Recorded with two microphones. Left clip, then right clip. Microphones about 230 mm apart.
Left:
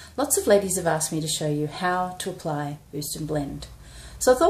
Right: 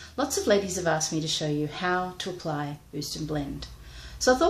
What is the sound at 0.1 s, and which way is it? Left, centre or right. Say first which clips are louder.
Speech: left 4 dB; centre.